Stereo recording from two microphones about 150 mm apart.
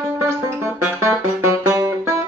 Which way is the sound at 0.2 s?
20° right (ahead or behind).